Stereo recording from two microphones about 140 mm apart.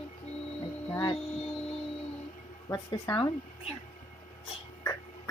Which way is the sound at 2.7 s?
20° left (ahead or behind).